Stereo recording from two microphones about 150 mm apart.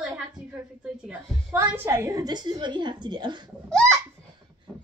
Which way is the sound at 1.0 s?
10° right (ahead or behind).